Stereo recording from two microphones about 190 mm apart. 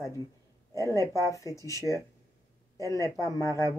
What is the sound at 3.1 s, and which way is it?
Speech, 15° left (ahead or behind).